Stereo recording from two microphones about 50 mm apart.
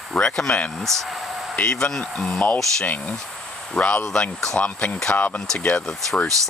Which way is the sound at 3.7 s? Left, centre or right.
Left.